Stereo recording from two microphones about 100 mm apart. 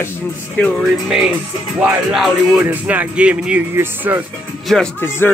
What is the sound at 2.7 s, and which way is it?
Speech, 15° right (ahead or behind).